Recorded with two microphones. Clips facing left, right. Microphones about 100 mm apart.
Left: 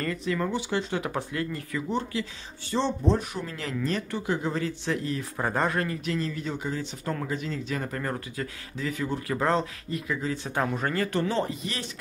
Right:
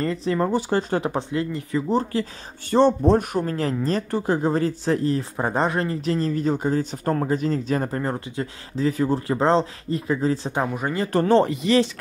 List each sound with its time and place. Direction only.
0.0 s speech: 30° right (ahead or behind)
1.0 s speech: 25° right (ahead or behind)
1.9 s speech: 40° right (ahead or behind)
2.7 s speech: 50° right (ahead or behind)
5.4 s speech: 20° right (ahead or behind)
10.5 s speech: 15° right (ahead or behind)
11.2 s speech: 70° right (ahead or behind); by 11.9 s 90° right